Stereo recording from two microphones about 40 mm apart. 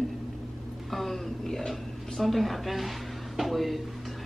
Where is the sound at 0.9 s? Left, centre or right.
Centre.